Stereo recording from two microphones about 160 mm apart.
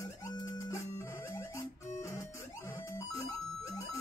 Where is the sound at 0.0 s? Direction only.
20° left (ahead or behind).